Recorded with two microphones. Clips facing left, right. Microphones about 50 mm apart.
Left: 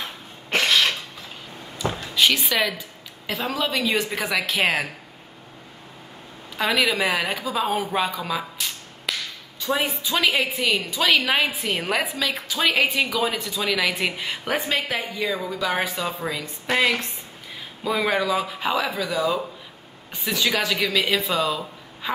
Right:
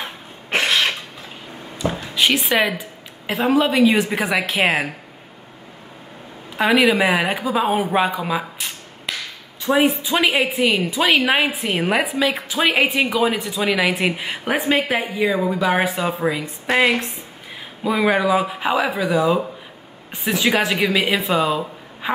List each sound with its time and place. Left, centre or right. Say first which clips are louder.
0.0 s cough: right 3 dB; right
2.1 s speech: right 1 dB; centre
2.4 s a woman's voice: right 5 dB; right
6.5 s a woman's voice: right 6 dB; right
9.1 s a sound: right 1 dB; centre
9.6 s a woman's voice: right 7 dB; right
17.8 s a woman's voice: right 5 dB; centre